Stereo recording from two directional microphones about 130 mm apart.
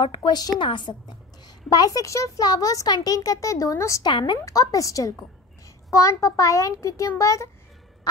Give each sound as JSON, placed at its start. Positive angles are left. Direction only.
{"t": 0.0, "sound": "a woman's voice", "side_deg": 35}
{"t": 4.1, "sound": "a woman's voice", "side_deg": 35}